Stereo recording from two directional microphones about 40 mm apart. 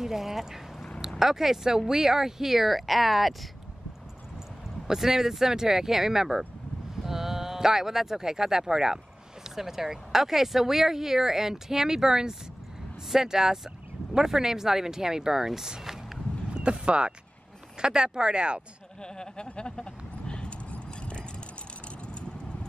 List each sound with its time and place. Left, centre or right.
0.0 s speech: centre
4.8 s speech: centre
16.5 s speech: right
19.0 s vehicle: left